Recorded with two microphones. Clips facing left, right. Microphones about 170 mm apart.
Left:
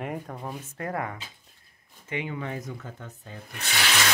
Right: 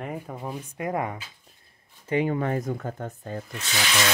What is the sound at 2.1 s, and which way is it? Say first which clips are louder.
Speech: right 8 dB; 45° right (ahead or behind).